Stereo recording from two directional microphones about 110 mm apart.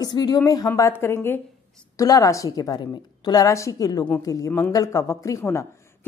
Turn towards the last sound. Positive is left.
turn(degrees=25)  # may be behind; listen again after turning